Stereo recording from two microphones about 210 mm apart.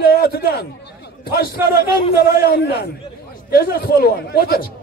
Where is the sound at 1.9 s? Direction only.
45° left (ahead or behind).